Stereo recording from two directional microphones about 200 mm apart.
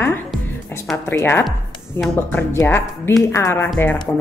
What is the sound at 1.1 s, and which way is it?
A woman's voice, 10° left (ahead or behind).